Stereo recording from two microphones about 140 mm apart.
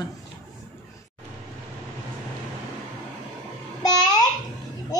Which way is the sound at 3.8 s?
25° left (ahead or behind).